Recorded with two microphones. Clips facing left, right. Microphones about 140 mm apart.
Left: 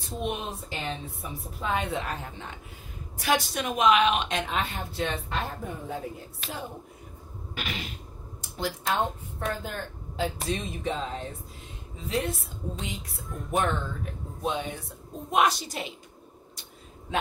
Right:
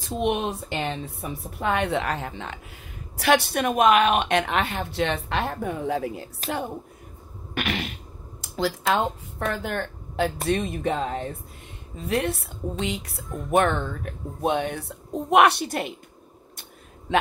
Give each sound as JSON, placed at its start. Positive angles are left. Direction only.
{"t": 0.2, "sound": "speech", "side_deg": -70}
{"t": 3.2, "sound": "speech", "side_deg": -70}
{"t": 7.5, "sound": "a woman's voice", "side_deg": -70}